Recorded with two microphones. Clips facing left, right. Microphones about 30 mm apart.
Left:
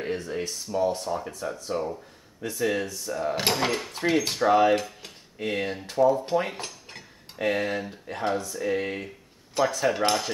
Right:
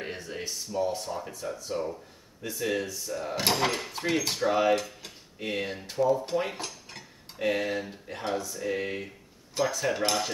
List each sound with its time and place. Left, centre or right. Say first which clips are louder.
0.0 s a sound: left 6 dB; centre
0.7 s speech: left 3 dB; left
1.0 s speech: left 4 dB; centre
2.5 s speech: left 3 dB; centre